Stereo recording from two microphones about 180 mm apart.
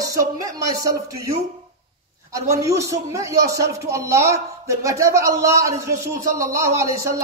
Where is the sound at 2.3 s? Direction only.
15° right (ahead or behind).